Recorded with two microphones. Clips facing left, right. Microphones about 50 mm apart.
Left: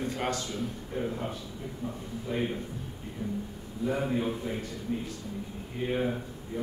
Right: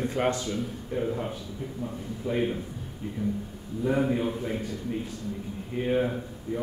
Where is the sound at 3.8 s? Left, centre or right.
Centre.